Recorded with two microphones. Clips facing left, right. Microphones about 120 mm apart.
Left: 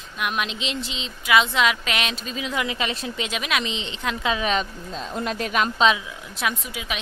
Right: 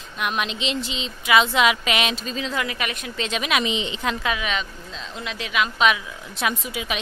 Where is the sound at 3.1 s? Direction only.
10° left (ahead or behind).